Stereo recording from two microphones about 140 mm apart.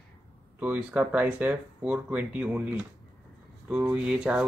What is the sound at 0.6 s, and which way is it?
Speech, 10° right (ahead or behind).